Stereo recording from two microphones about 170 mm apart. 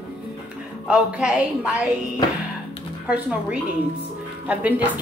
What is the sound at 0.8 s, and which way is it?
Speech, 5° right (ahead or behind).